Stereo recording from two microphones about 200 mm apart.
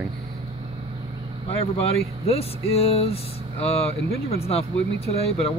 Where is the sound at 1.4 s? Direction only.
30° left (ahead or behind).